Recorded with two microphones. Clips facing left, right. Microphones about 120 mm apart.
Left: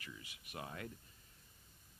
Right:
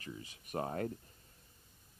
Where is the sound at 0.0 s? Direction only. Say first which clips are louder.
Right 7 dB; 35° right (ahead or behind).